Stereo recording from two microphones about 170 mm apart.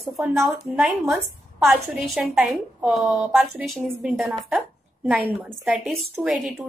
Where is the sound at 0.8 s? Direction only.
Centre (ahead or behind).